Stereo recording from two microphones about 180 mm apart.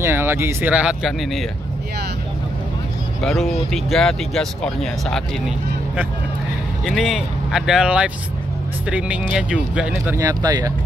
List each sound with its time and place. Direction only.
0.0 s speech: 10° right (ahead or behind)
3.3 s speech: centre (ahead or behind)
6.8 s speech: centre (ahead or behind)
10.2 s speech: 20° right (ahead or behind)